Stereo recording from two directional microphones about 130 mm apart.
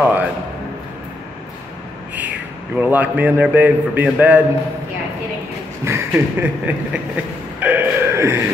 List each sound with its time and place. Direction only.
0.0 s music: 10° right (ahead or behind)
2.1 s a man's voice: 15° right (ahead or behind)
5.9 s a sound: 20° right (ahead or behind)